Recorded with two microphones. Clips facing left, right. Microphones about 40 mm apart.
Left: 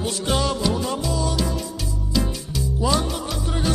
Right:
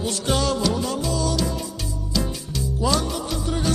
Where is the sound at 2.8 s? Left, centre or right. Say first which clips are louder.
Even; centre.